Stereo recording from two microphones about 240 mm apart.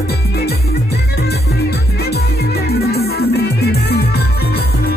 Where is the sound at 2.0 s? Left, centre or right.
Left.